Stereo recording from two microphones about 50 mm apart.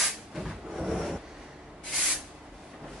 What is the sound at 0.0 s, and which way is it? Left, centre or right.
Cupboard open or close, centre.